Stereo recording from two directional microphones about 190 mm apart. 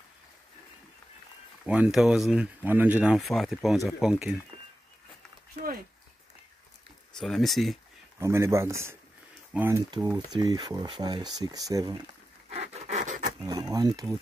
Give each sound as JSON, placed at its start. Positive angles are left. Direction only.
{"t": 1.7, "sound": "speech", "side_deg": -5}
{"t": 7.2, "sound": "speech", "side_deg": 0}
{"t": 8.2, "sound": "speech", "side_deg": -15}
{"t": 12.4, "sound": "wood", "side_deg": -35}
{"t": 13.4, "sound": "speech", "side_deg": -20}